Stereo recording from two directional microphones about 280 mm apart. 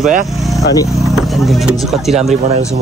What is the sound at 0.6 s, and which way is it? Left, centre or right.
Speech, centre.